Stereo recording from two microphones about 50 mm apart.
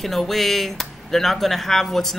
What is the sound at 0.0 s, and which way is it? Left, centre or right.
Speech, centre.